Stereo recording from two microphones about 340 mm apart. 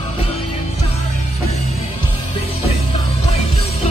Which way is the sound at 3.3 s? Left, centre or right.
Centre.